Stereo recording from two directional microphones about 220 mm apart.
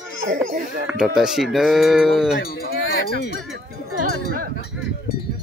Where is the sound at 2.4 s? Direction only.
45° left (ahead or behind).